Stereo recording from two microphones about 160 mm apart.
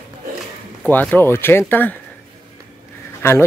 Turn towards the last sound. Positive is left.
turn(degrees=15)  # may be behind; listen again after turning